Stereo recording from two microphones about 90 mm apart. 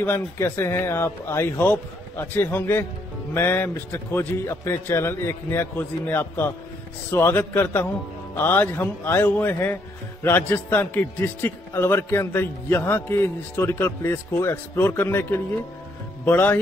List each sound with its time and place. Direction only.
0.0 s a man's voice: 25° left (ahead or behind)